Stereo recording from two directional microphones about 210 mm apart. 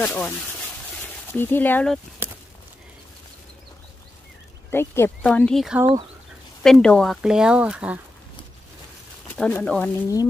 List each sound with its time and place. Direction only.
0.0 s speech: 10° left (ahead or behind)
1.3 s speech: 10° left (ahead or behind)
4.6 s speech: 10° left (ahead or behind); by 8.0 s 5° right (ahead or behind)
9.3 s speech: 5° left (ahead or behind)